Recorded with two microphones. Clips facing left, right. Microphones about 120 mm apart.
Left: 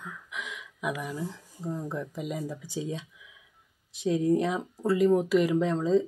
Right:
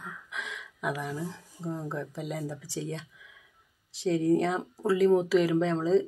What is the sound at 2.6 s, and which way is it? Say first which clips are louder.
Speech: left 1 dB; 85° right.